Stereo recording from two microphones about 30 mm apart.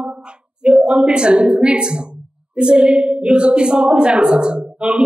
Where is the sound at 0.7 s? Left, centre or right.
Right.